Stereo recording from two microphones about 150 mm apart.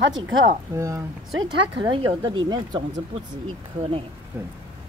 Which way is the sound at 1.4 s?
35° right (ahead or behind).